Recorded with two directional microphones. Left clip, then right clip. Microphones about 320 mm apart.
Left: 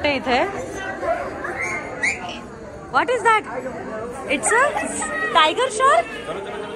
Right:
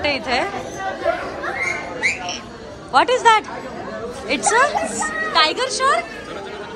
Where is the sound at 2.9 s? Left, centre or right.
Centre.